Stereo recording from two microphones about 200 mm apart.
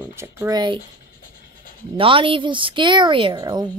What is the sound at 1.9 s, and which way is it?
A woman's voice, 25° right (ahead or behind).